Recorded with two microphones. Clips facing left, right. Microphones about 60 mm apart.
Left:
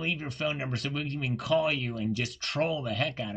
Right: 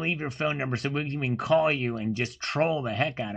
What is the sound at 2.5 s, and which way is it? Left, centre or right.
Speech, right.